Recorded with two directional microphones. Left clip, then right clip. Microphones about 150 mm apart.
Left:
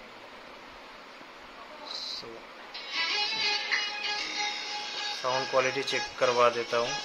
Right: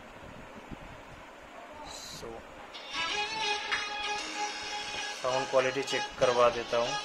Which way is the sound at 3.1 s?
25° right (ahead or behind).